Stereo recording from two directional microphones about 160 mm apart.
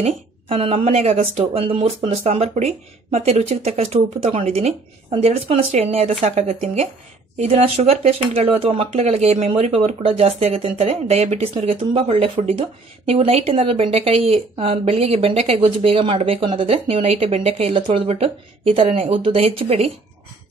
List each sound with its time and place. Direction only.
0.0 s speech: 35° right (ahead or behind)